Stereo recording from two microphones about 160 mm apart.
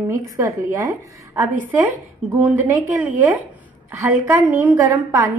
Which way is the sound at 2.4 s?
10° right (ahead or behind).